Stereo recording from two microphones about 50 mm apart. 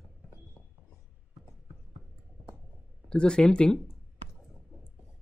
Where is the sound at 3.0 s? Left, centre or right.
Centre.